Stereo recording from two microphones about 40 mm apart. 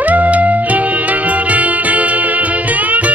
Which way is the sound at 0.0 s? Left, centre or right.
Right.